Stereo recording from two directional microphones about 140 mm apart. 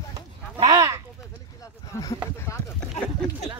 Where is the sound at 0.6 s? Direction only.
25° right (ahead or behind).